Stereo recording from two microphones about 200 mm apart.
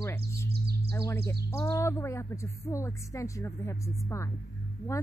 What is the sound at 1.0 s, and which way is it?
Speech, 15° left (ahead or behind).